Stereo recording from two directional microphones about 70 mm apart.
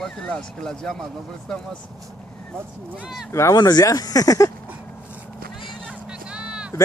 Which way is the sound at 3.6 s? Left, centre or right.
Left.